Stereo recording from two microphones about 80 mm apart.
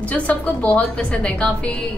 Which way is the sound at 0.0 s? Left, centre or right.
Centre.